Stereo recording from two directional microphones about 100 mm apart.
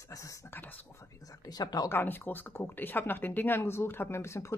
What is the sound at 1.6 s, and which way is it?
Speech, 40° left (ahead or behind).